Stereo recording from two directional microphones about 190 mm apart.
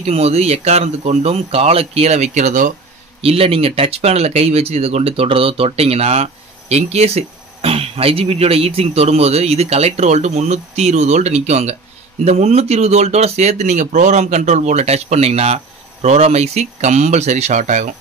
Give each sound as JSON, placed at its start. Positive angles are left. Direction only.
{"t": 0.0, "sound": "speech", "side_deg": -35}
{"t": 3.2, "sound": "speech", "side_deg": -30}